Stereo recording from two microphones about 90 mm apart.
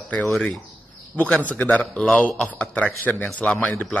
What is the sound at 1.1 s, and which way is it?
Speech, 15° left (ahead or behind).